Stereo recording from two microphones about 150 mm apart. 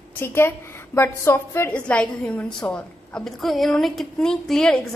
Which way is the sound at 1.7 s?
5° left (ahead or behind).